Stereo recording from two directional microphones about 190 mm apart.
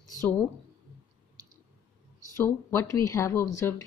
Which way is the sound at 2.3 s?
15° left (ahead or behind).